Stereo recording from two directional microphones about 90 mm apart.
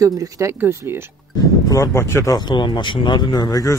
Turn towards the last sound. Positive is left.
turn(degrees=40)  # may be behind; listen again after turning